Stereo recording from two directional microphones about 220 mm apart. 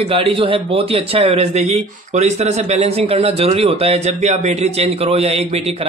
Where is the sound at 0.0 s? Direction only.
25° right (ahead or behind).